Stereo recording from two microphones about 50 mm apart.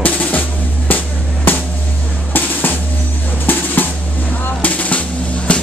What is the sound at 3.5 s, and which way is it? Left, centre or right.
Drum, left.